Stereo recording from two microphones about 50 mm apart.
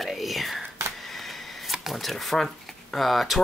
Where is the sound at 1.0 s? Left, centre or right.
Centre.